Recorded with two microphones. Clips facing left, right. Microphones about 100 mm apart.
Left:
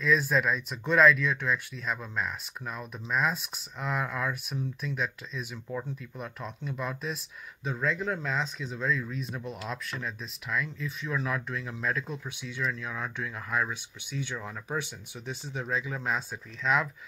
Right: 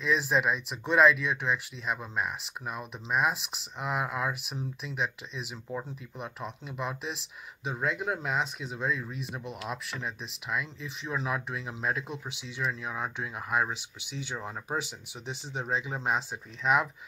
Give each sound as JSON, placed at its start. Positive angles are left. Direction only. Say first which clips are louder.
{"t": 0.0, "sound": "speech", "louder": "left 1 dB", "side_deg": -10}